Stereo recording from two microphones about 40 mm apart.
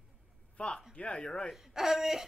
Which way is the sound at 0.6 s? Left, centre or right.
Left.